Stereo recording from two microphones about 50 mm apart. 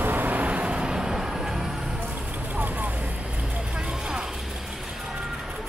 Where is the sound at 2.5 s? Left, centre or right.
Right.